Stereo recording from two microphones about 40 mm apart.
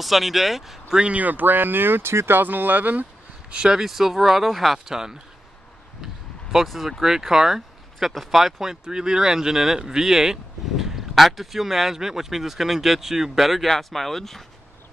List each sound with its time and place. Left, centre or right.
0.0 s speech: centre
1.1 s speech: right
3.4 s speech: right
6.5 s speech: centre